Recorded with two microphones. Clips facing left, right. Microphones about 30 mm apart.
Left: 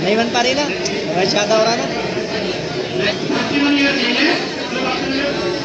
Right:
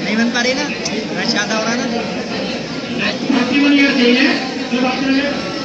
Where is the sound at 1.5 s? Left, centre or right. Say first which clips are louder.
Left 3 dB; left.